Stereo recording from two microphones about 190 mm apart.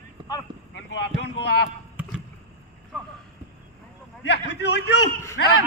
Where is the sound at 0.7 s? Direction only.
60° left (ahead or behind).